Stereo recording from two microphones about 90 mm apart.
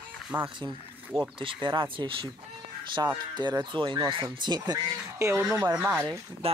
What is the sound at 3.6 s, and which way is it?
Speech, 60° right (ahead or behind).